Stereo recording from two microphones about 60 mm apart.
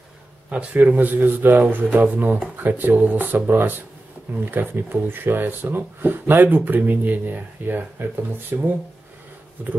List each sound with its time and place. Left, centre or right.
0.5 s speech: right